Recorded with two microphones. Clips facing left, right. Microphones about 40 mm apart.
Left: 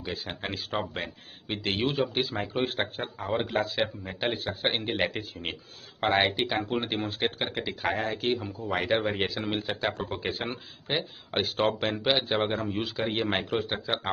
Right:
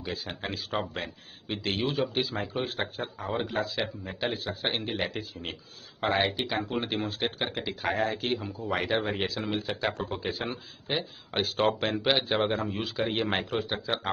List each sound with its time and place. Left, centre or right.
0.0 s speech: centre
1.5 s speech: left
2.0 s a man's voice: centre
2.6 s speech: left
3.0 s speech: centre
3.4 s speech: left
4.0 s a man's voice: centre
4.7 s speech: left
6.7 s a man's voice: centre
10.2 s speech: left
10.9 s a man's voice: centre
13.6 s a man's voice: centre